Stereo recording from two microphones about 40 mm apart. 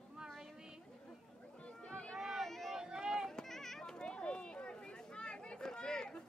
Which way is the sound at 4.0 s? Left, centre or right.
Left.